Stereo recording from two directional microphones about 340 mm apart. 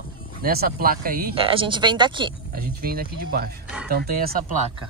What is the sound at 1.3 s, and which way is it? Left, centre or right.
Speech, centre.